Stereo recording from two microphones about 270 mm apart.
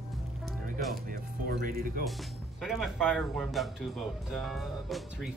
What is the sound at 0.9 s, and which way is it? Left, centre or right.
Speech, right.